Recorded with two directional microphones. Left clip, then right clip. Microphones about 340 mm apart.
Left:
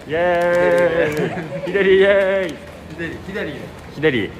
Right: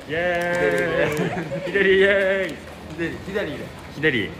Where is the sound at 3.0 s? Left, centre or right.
Centre.